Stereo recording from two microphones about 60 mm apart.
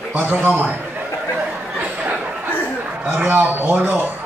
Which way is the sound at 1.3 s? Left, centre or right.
Right.